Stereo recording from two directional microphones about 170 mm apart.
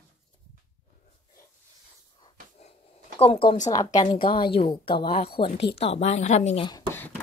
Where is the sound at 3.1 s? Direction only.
35° left (ahead or behind).